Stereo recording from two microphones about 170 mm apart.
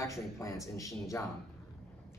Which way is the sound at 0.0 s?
20° left (ahead or behind).